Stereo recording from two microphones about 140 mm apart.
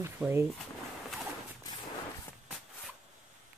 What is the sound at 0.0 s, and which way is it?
Speech, 20° right (ahead or behind).